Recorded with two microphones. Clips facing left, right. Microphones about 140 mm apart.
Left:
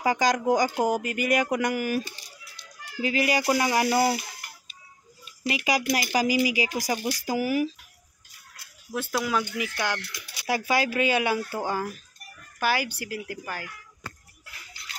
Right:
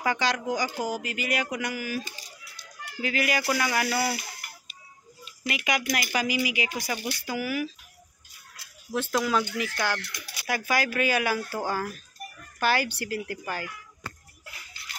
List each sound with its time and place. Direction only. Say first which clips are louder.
0.0 s speech: left 4 dB; 40° left (ahead or behind)
3.0 s speech: left 3 dB; 30° left (ahead or behind)
5.5 s speech: left 3 dB; 30° left (ahead or behind)
8.9 s speech: right 1 dB; 10° left (ahead or behind)
10.4 s speech: left 2 dB; 25° left (ahead or behind); by 13.7 s 5° left (ahead or behind)